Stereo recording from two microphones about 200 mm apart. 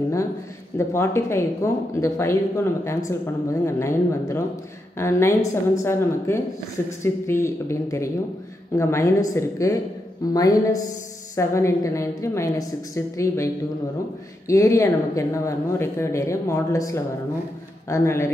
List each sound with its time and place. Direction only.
0.7 s speech: 15° left (ahead or behind)
14.5 s speech: 15° left (ahead or behind)